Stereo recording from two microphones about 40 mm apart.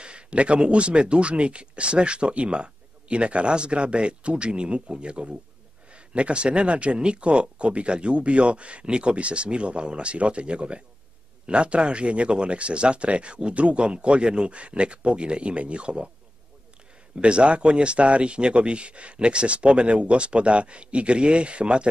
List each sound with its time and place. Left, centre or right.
0.0 s speech: right
17.2 s speech: right